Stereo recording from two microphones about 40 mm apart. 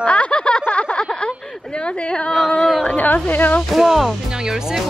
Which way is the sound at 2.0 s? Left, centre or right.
Centre.